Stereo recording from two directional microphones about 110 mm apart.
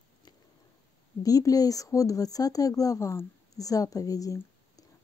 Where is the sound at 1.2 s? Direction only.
35° left (ahead or behind).